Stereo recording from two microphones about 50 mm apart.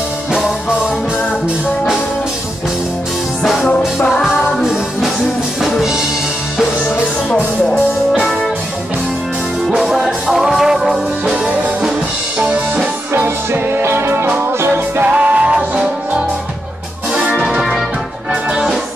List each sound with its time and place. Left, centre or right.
0.3 s music: centre
4.6 s music: centre
8.1 s music: centre
9.7 s music: centre
11.2 s music: right
13.1 s music: right
15.0 s music: right
17.6 s music: centre